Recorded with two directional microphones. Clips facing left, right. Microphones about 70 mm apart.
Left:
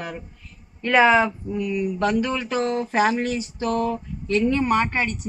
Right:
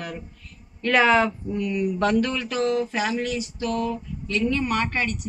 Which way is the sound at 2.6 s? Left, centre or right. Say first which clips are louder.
Left 2 dB; left.